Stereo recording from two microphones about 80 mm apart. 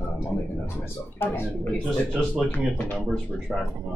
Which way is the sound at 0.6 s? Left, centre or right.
Left.